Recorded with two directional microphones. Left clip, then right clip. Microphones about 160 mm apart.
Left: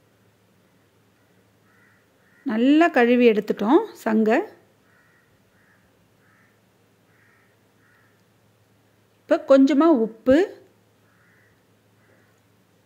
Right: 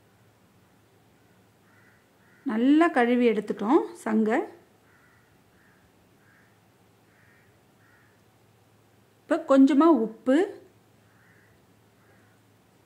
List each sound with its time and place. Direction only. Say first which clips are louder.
2.4 s a woman's voice: left 4 dB; 20° left (ahead or behind)
9.3 s speech: left 4 dB; 10° left (ahead or behind)